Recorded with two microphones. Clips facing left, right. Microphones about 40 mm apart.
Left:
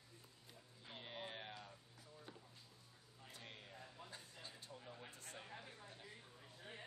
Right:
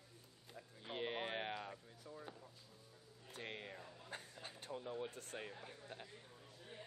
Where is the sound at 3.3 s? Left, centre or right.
Right.